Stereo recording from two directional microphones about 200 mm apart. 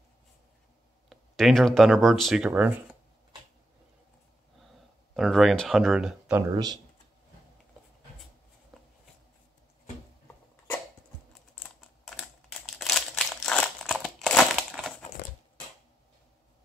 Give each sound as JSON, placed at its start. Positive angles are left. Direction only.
{"t": 1.0, "sound": "speech", "side_deg": 0}
{"t": 5.1, "sound": "speech", "side_deg": 0}
{"t": 6.5, "sound": "speech", "side_deg": -20}
{"t": 8.7, "sound": "a sound", "side_deg": 0}
{"t": 12.0, "sound": "crumpling", "side_deg": 0}